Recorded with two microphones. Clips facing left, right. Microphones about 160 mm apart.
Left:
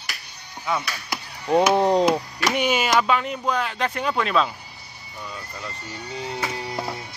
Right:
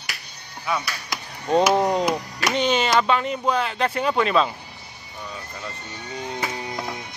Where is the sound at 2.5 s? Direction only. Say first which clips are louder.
Right 1 dB; 10° left (ahead or behind).